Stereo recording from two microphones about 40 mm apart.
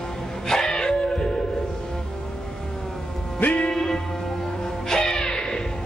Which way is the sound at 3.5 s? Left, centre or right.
Left.